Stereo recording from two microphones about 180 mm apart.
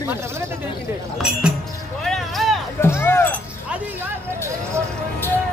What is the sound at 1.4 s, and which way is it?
Music, 5° right (ahead or behind).